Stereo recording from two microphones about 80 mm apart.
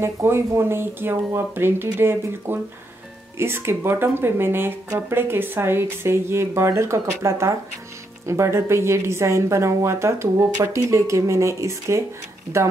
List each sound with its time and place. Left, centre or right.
0.0 s speech: right